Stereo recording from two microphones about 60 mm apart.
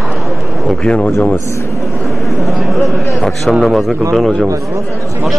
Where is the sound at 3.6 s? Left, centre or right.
Centre.